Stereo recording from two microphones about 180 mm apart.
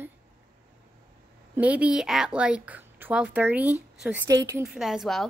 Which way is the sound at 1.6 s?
5° right (ahead or behind).